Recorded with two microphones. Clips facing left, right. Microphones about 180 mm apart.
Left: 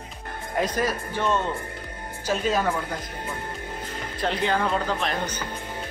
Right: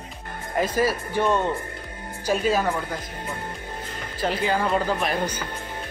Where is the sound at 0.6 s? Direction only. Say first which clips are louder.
Right 3 dB; 5° right (ahead or behind).